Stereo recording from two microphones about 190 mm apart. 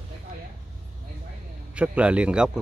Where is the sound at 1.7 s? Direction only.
5° right (ahead or behind).